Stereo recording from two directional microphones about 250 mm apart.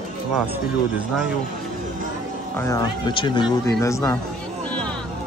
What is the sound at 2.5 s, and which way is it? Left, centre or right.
Speech, centre.